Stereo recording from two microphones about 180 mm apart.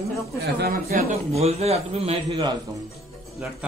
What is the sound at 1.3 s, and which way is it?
A man's voice, 35° right (ahead or behind).